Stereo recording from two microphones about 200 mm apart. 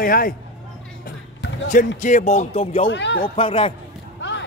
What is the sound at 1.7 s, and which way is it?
A man's voice, 40° left (ahead or behind).